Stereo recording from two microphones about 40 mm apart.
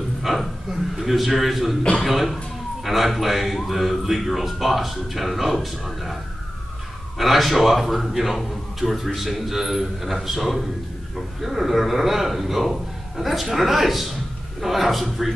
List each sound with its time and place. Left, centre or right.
0.2 s a sound: centre
0.9 s a man's voice: centre
1.8 s speech: left
2.0 s a man's voice: centre
7.2 s a man's voice: centre